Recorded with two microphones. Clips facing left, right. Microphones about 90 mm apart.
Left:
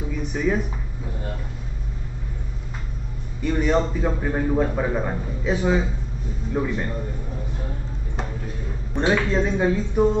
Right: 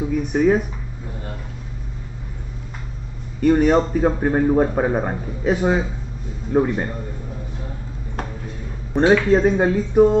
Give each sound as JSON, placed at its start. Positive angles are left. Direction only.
{"t": 0.1, "sound": "speech", "side_deg": -50}
{"t": 3.3, "sound": "a man's voice", "side_deg": -55}
{"t": 8.9, "sound": "a man's voice", "side_deg": -40}